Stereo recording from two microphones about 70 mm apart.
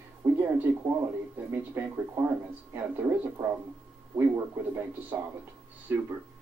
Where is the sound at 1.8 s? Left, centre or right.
Right.